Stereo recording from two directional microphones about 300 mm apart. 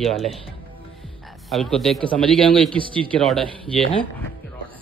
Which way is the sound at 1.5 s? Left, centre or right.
Centre.